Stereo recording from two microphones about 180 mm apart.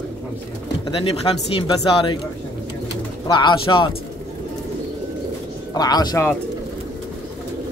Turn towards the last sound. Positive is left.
turn(degrees=20)  # may be behind; listen again after turning